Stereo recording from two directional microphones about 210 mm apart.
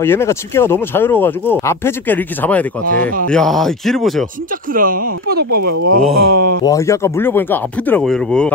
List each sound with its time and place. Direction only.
0.0 s speech: 10° left (ahead or behind)
4.7 s speech: 40° right (ahead or behind)
6.6 s speech: 15° left (ahead or behind)